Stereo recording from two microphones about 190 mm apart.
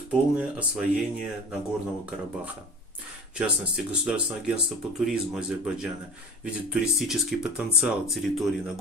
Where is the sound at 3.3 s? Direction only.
5° right (ahead or behind).